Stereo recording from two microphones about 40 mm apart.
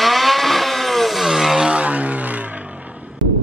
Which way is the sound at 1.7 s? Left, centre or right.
Right.